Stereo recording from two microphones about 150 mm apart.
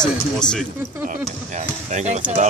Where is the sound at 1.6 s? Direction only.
50° right (ahead or behind).